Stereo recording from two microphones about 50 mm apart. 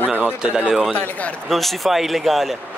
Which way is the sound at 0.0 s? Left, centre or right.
Right.